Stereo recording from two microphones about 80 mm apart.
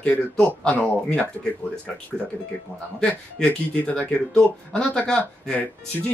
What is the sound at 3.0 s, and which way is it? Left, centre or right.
Speech, centre.